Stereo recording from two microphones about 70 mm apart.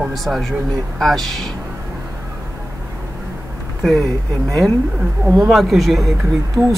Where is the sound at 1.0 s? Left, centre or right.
Centre.